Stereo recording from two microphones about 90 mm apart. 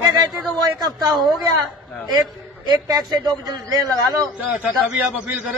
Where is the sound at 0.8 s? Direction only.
50° right (ahead or behind).